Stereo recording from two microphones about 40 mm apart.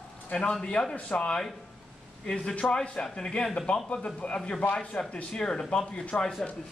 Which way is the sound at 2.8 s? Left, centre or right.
Centre.